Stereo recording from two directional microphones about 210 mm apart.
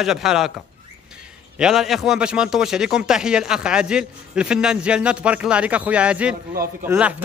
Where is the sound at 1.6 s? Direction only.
Centre (ahead or behind).